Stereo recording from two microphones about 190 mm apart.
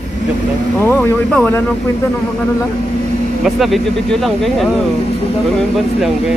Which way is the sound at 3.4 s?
Centre (ahead or behind).